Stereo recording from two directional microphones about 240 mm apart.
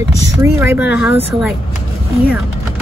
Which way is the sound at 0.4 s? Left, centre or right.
Centre.